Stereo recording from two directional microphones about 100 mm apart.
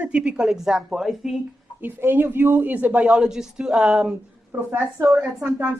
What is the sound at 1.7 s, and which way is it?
Speech, 20° right (ahead or behind).